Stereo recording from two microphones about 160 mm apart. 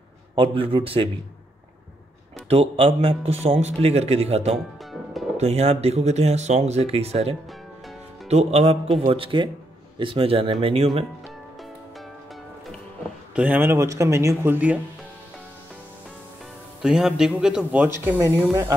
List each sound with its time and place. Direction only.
0.4 s a man's voice: 35° right (ahead or behind)
2.5 s a man's voice: 40° right (ahead or behind)
13.3 s a man's voice: 10° right (ahead or behind)
16.8 s a man's voice: 5° right (ahead or behind)